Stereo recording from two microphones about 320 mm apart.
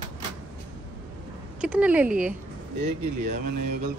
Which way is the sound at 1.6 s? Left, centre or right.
Centre.